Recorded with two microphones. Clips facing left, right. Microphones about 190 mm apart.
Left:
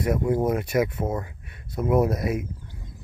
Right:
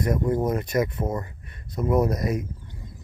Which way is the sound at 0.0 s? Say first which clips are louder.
Left 1 dB; 5° left (ahead or behind).